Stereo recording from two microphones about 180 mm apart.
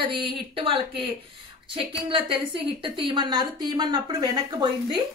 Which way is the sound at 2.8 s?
30° right (ahead or behind).